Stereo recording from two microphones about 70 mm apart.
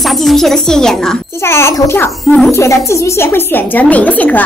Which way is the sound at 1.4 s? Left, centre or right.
Left.